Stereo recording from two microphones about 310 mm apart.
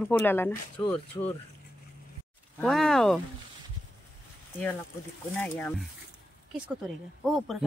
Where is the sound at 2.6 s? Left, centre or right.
Centre.